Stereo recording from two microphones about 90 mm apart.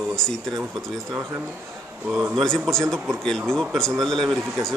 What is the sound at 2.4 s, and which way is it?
Speech, 5° left (ahead or behind).